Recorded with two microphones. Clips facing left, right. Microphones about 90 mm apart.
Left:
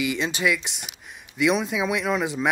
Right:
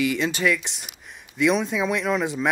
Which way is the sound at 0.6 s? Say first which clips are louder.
Even; centre (ahead or behind).